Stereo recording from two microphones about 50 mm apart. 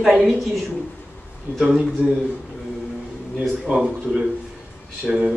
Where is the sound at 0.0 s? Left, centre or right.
Centre.